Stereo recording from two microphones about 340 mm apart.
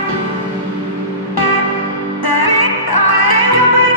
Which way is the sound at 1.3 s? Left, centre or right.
Left.